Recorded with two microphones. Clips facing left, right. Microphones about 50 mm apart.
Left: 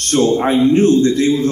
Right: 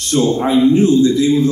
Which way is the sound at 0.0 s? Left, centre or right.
Left.